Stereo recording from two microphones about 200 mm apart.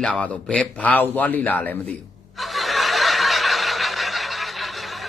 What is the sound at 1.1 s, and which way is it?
Snicker, 10° left (ahead or behind).